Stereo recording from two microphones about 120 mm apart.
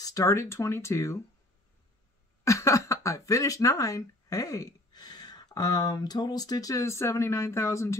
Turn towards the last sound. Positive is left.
turn(degrees=25)  # may be behind; listen again after turning